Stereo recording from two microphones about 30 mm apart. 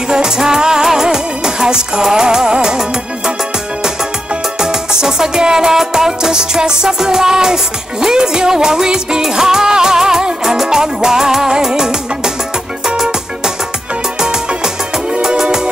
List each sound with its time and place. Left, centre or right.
0.1 s music: right
4.6 s music: right
14.2 s music: right